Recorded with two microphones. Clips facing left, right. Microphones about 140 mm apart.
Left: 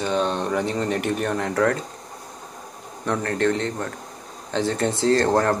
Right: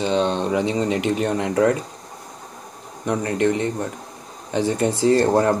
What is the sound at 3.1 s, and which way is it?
Speech, 10° right (ahead or behind).